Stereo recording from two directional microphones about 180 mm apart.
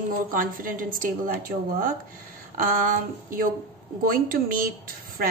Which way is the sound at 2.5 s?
50° right (ahead or behind).